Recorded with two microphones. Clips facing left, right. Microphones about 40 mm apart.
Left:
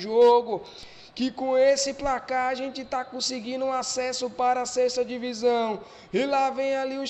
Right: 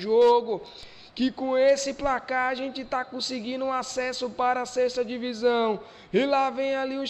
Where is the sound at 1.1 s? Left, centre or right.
Centre.